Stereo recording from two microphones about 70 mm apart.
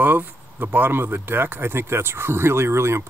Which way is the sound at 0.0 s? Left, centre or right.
Right.